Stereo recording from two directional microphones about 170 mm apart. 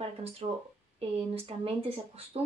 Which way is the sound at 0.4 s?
30° right (ahead or behind).